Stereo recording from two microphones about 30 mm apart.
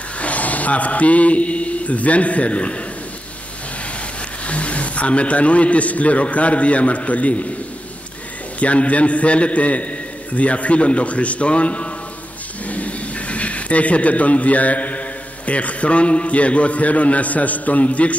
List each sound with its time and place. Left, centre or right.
0.2 s a man's voice: left
4.5 s a man's voice: left
8.5 s a man's voice: left
12.6 s speech: left